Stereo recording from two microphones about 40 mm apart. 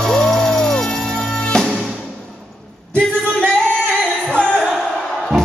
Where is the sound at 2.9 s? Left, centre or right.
Left.